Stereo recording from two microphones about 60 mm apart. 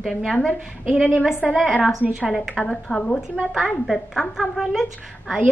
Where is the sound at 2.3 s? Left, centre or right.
Centre.